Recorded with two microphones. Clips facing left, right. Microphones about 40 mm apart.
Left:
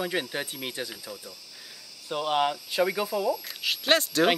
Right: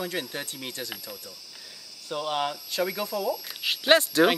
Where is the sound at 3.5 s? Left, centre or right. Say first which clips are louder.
Right 3 dB; centre.